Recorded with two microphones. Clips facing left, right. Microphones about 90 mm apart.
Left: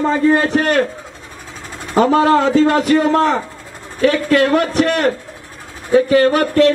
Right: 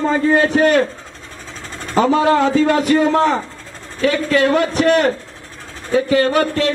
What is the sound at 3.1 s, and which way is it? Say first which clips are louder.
Speech: left 1 dB; 20° right (ahead or behind).